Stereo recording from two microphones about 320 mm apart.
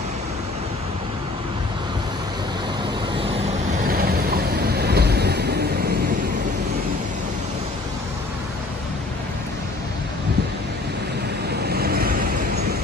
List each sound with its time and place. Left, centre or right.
3.8 s vehicle: right
11.6 s vehicle: right